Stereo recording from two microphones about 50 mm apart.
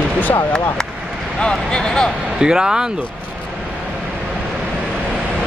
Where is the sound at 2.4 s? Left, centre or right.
Centre.